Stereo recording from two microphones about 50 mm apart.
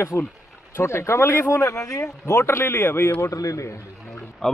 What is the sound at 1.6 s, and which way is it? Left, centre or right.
Speech, left.